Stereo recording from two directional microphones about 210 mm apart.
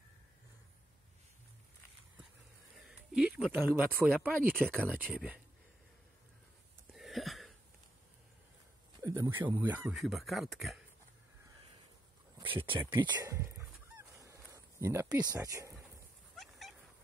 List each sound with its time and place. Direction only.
2.8 s a sound: centre (ahead or behind)
3.7 s speech: 10° right (ahead or behind)
6.9 s a sound: centre (ahead or behind)
9.0 s speech: 15° right (ahead or behind)
12.5 s goose: 25° right (ahead or behind)
15.3 s speech: 15° right (ahead or behind)
16.3 s dog: centre (ahead or behind)